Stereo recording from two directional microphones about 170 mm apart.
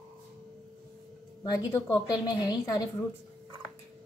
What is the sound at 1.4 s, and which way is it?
A woman's voice, 20° left (ahead or behind).